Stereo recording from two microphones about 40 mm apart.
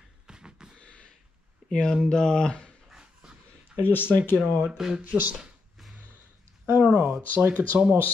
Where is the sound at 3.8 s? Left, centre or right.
Left.